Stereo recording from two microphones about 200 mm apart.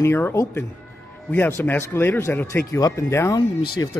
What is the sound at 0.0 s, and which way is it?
Speech, 10° left (ahead or behind).